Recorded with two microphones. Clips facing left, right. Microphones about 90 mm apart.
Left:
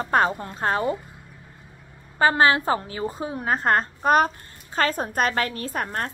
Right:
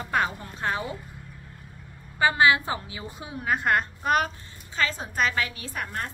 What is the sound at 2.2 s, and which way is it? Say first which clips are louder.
A woman's voice: left 3 dB; 40° left (ahead or behind).